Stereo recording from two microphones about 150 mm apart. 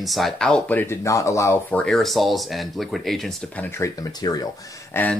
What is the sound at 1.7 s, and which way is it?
Speech, 5° left (ahead or behind).